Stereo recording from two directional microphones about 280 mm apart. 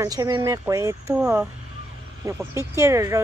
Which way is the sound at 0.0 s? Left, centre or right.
Centre.